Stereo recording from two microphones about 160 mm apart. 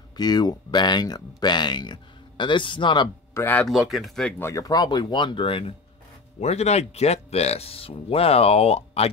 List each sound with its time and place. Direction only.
0.2 s speech: 25° left (ahead or behind)
3.3 s speech: 10° left (ahead or behind)
3.6 s speech: centre (ahead or behind)
4.4 s speech: 20° left (ahead or behind); by 9.1 s 40° left (ahead or behind)